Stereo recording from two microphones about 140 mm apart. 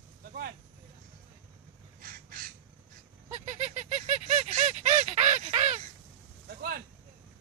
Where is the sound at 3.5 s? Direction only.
60° right (ahead or behind).